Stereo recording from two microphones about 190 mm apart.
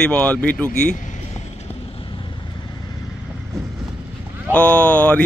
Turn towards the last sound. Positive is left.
turn(degrees=10)  # may be behind; listen again after turning